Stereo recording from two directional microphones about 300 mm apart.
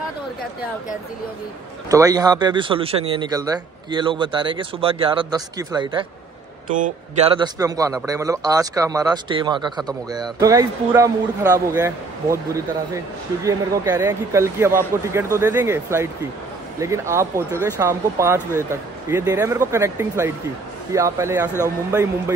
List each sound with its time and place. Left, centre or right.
1.9 s speech: centre